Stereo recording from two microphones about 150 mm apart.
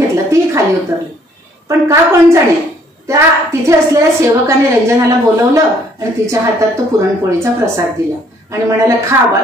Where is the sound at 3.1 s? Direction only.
20° right (ahead or behind).